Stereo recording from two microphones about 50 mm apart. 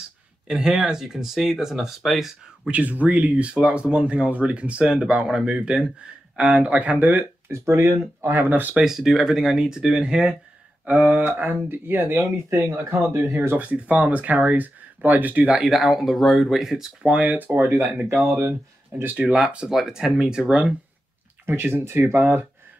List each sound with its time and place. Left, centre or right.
0.5 s speech: centre
2.7 s speech: right
7.4 s speech: right
8.8 s speech: centre
10.9 s speech: right
12.2 s speech: right
13.6 s speech: right
15.6 s speech: centre
17.0 s speech: right
18.2 s speech: right
19.0 s speech: right
21.5 s speech: right